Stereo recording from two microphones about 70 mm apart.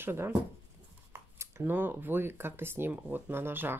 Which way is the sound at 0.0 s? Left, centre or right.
Right.